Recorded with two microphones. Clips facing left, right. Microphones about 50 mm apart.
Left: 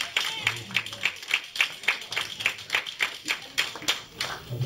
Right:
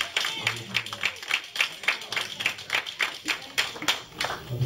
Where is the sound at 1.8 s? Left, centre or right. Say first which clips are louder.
Even; centre.